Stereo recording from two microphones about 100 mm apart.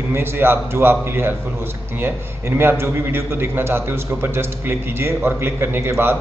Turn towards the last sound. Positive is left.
turn(degrees=-25)  # may be behind; listen again after turning